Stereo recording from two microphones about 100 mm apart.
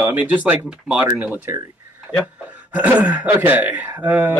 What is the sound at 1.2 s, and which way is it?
Speech, 20° right (ahead or behind).